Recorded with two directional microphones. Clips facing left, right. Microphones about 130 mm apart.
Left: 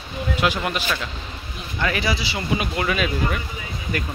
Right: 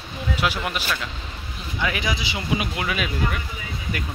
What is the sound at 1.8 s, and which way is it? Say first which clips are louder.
Speech: left 2 dB; 10° right (ahead or behind).